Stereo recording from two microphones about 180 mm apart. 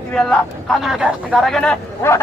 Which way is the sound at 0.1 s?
5° left (ahead or behind).